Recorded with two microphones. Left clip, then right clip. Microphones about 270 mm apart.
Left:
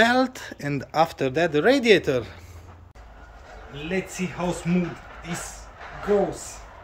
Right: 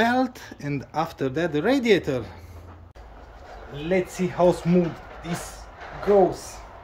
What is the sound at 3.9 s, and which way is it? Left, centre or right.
Speech, right.